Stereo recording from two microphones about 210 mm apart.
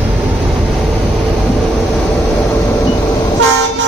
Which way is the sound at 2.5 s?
15° left (ahead or behind).